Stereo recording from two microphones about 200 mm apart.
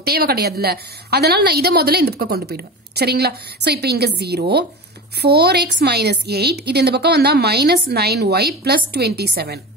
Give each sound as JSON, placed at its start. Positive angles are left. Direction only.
{"t": 0.0, "sound": "a woman's voice", "side_deg": -50}